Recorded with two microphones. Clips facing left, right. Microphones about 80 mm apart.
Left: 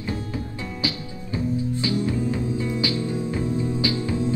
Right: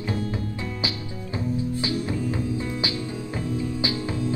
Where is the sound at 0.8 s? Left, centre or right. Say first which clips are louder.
Left 1 dB; right.